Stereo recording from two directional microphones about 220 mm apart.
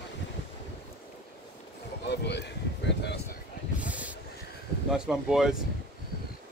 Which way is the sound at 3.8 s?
5° right (ahead or behind).